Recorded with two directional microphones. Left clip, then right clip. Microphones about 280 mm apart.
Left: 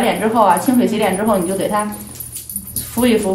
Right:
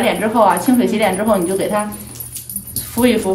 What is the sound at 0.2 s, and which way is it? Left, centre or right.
Speech, centre.